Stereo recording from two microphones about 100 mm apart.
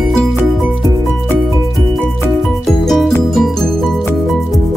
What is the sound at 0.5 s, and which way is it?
Music, centre (ahead or behind).